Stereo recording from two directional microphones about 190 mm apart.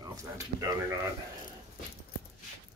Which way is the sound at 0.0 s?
20° right (ahead or behind).